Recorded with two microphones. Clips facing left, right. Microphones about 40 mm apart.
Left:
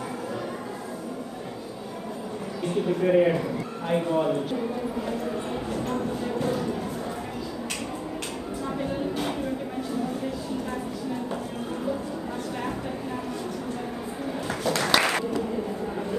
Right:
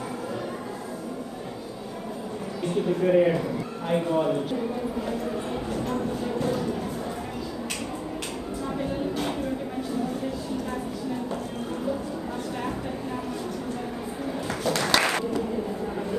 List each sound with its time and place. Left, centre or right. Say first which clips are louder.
3.0 s a man's voice: even; centre
5.7 s speech: even; centre
14.5 s applause: left 1 dB; centre